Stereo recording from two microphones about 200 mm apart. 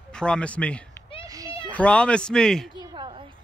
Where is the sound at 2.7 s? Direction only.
20° right (ahead or behind).